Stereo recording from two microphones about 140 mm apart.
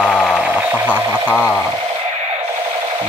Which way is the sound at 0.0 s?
5° right (ahead or behind).